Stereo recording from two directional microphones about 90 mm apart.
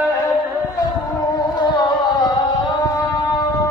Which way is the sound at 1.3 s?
55° left (ahead or behind).